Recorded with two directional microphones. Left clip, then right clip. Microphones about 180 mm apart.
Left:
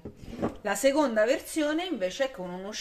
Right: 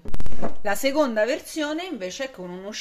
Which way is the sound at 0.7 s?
25° right (ahead or behind).